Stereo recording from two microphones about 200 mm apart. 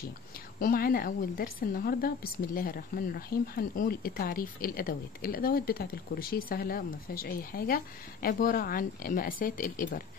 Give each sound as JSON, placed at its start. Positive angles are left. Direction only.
{"t": 0.6, "sound": "a woman's voice", "side_deg": 45}